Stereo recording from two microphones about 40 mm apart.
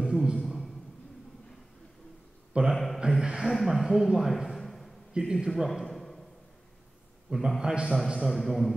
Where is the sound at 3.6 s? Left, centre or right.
Centre.